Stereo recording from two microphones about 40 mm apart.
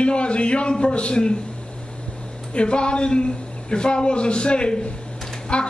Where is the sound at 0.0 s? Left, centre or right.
Left.